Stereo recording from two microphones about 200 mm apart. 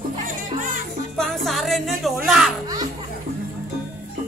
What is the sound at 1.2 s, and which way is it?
Music, centre (ahead or behind).